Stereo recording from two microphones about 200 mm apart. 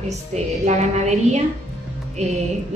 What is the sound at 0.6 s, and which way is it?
Speech, 35° right (ahead or behind).